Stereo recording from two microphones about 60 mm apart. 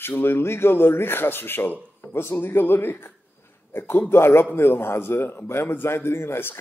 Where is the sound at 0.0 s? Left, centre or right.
Left.